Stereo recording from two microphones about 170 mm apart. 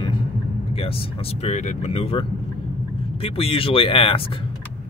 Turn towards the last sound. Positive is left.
turn(degrees=30)  # may be behind; listen again after turning